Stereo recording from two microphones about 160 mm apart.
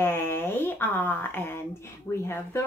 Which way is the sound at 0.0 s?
15° left (ahead or behind).